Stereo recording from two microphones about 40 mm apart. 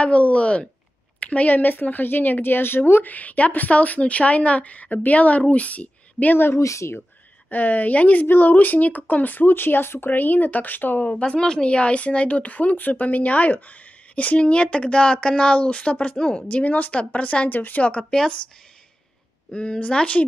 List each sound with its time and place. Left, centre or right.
0.0 s a woman's voice: left
3.0 s a woman's voice: left
6.3 s speech: left
7.4 s speech: left
8.3 s speech: left
10.1 s speech: left
11.2 s speech: centre
16.2 s speech: centre
16.4 s a woman's voice: left
17.5 s speech: left
18.1 s speech: left
19.5 s speech: left